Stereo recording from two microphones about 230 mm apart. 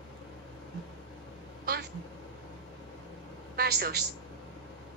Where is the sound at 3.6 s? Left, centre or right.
Right.